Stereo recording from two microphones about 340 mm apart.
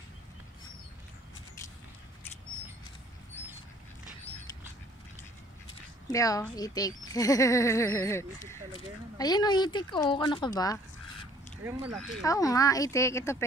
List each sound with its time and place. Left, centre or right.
6.1 s speech: centre
11.5 s speech: centre
12.1 s speech: centre